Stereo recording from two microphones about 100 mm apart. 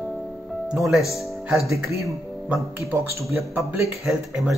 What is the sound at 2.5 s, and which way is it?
Speech, 15° right (ahead or behind).